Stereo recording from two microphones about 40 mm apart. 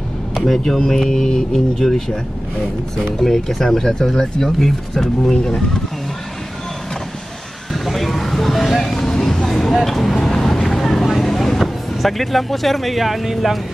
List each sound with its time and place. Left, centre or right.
0.3 s speech: centre
3.2 s speech: centre
5.3 s speech: left
7.7 s music: centre
9.0 s vehicle: centre